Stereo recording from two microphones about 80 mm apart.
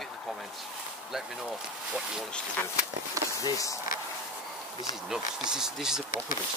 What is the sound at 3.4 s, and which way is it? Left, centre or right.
Speech, left.